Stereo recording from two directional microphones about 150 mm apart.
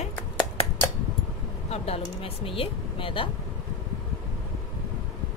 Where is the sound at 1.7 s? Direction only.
40° left (ahead or behind).